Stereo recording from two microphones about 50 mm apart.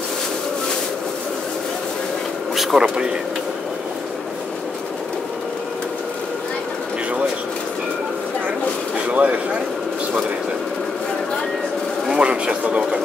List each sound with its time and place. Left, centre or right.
2.5 s speech: centre
9.1 s a sound: right
12.1 s pigeon: right